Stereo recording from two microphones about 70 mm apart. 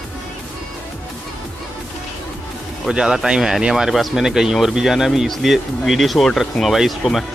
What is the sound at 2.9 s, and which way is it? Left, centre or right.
Speech, centre.